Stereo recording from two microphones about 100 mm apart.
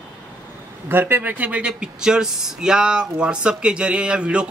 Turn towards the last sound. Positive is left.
turn(degrees=-10)  # may be behind; listen again after turning